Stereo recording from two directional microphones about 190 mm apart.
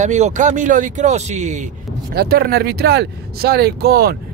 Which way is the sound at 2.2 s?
55° right (ahead or behind).